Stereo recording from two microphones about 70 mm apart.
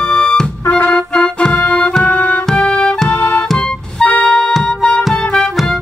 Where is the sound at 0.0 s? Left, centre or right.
Centre.